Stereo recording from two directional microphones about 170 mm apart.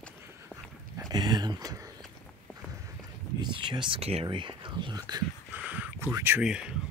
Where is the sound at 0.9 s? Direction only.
25° right (ahead or behind).